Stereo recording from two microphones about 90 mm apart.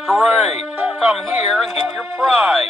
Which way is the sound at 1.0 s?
5° right (ahead or behind).